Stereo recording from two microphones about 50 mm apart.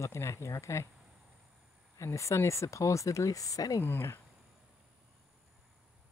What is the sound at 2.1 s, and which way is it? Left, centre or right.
Speech, left.